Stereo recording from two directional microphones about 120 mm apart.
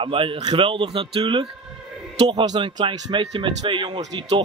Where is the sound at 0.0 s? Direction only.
50° right (ahead or behind).